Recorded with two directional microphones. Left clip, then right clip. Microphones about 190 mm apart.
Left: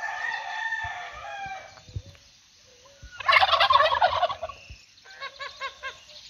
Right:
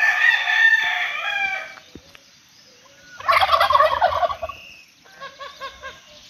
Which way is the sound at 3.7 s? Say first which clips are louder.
Right 4 dB; 20° left (ahead or behind).